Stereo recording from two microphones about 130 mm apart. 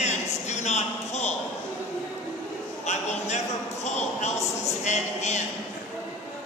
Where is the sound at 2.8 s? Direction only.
60° left (ahead or behind).